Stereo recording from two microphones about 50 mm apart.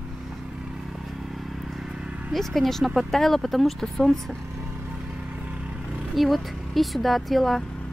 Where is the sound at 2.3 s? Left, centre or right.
Centre.